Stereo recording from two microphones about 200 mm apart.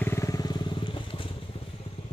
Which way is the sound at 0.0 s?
15° left (ahead or behind).